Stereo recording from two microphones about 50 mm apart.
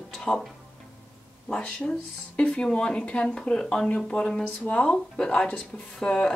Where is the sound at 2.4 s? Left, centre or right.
Left.